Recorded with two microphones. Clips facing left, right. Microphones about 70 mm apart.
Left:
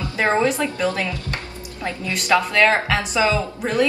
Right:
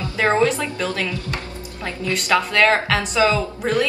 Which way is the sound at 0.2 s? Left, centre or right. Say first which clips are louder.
Right 1 dB; left.